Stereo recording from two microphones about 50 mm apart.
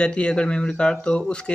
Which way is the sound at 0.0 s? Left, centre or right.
Centre.